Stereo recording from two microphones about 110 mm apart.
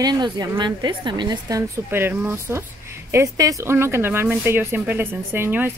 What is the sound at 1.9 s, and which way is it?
Speech, 20° right (ahead or behind).